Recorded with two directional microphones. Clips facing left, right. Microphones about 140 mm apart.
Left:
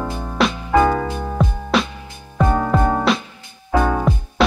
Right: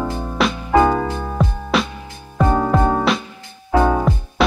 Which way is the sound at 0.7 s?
15° right (ahead or behind).